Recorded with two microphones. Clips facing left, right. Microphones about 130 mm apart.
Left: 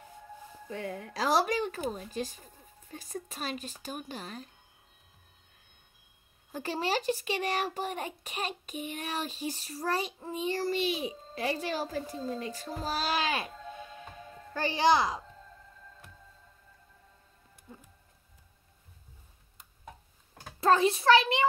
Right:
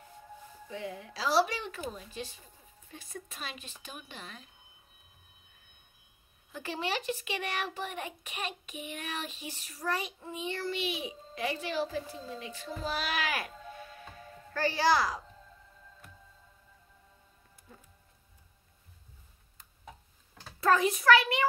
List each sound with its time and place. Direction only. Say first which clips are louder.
0.7 s a child's voice: left 2 dB; 50° left (ahead or behind)
6.5 s a child's voice: left 4 dB; 35° left (ahead or behind); by 15.2 s 20° left (ahead or behind)
17.7 s music: left 5 dB; 20° left (ahead or behind)
20.6 s a child's voice: left 1 dB; 30° left (ahead or behind)